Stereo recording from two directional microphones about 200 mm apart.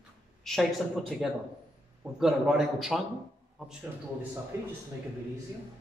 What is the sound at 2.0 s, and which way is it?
Speech, centre (ahead or behind).